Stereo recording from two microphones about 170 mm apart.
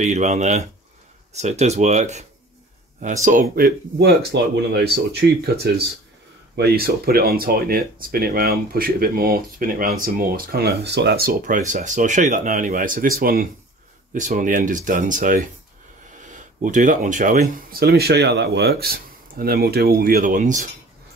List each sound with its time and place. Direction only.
0.0 s speech: 40° right (ahead or behind); by 13.5 s 60° right (ahead or behind)
14.1 s speech: 50° right (ahead or behind)